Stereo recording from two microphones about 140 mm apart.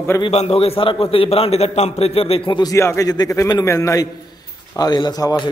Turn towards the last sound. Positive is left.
turn(degrees=25)  # may be behind; listen again after turning